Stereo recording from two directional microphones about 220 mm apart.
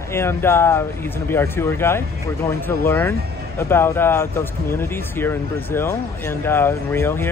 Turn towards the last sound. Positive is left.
turn(degrees=10)  # may be behind; listen again after turning